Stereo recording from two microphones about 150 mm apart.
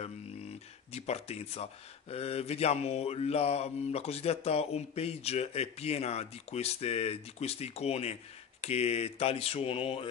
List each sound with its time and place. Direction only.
0.9 s speech: 45° left (ahead or behind)